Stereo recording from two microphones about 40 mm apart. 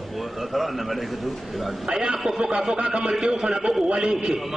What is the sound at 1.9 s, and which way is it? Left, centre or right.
A man's voice, centre.